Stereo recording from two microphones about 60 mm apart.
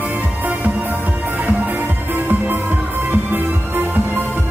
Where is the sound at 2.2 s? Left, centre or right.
Right.